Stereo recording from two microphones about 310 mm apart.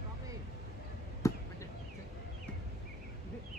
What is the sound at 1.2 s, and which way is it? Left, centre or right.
Chop, centre.